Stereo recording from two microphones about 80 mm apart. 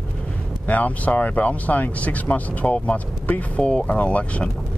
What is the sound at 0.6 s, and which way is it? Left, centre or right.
Speech, centre.